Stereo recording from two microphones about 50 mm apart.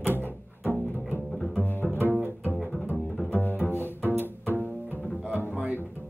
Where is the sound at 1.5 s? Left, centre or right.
Left.